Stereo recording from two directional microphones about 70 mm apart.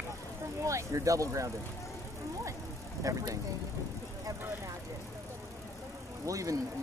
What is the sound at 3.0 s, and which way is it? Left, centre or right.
Speech, right.